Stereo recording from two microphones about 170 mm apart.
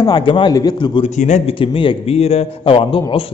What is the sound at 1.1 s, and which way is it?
Speech, 45° left (ahead or behind).